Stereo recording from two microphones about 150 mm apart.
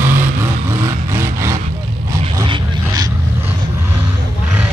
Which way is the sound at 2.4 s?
25° right (ahead or behind).